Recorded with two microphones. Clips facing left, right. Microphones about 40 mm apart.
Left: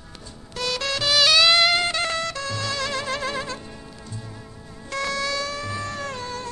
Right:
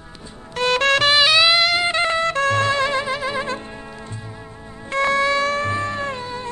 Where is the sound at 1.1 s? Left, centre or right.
Right.